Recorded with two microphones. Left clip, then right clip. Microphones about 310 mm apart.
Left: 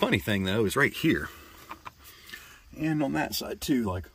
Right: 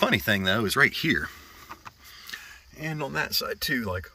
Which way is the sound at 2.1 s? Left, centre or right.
Centre.